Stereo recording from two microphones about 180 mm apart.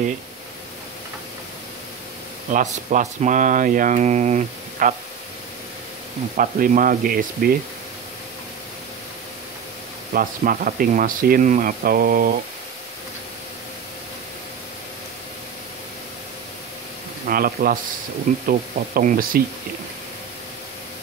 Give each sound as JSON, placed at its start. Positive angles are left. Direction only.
{"t": 2.5, "sound": "speech", "side_deg": -40}
{"t": 6.3, "sound": "speech", "side_deg": -50}
{"t": 10.1, "sound": "speech", "side_deg": -50}
{"t": 17.3, "sound": "speech", "side_deg": -50}